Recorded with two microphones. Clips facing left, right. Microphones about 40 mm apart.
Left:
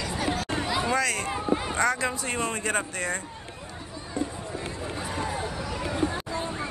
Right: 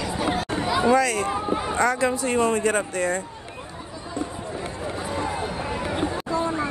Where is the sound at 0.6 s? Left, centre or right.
Centre.